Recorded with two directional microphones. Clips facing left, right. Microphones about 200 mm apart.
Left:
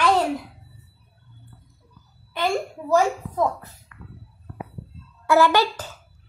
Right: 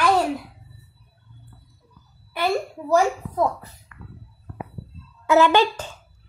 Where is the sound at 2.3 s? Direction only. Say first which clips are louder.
Right 1 dB; 10° right (ahead or behind).